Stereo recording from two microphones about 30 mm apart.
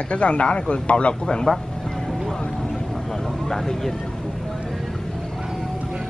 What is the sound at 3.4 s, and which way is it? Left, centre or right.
Speech, centre.